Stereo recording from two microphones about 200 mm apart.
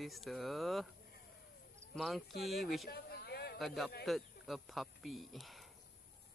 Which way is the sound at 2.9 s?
50° left (ahead or behind).